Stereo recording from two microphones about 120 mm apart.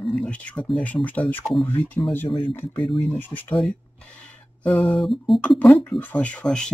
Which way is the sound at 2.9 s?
Centre (ahead or behind).